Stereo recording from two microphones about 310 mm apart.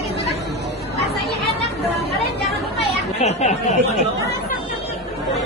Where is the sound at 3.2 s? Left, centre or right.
Left.